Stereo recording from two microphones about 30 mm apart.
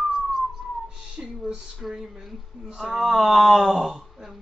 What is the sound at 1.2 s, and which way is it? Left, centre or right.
Speech, right.